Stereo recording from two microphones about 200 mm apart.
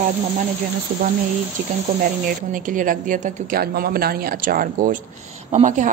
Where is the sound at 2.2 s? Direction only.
45° right (ahead or behind).